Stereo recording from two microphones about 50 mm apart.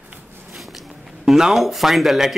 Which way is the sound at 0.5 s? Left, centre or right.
Centre.